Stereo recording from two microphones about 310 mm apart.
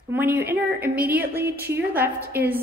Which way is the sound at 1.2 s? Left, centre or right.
Right.